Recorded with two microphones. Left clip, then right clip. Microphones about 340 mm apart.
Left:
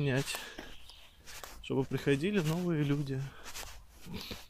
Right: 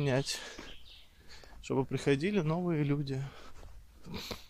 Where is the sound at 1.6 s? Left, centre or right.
Centre.